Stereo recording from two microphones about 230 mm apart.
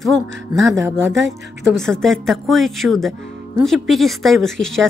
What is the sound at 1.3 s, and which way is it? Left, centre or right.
Speech, centre.